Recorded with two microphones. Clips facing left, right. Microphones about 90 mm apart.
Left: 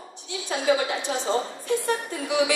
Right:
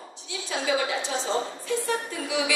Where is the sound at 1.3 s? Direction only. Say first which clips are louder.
Left 2 dB; 30° left (ahead or behind).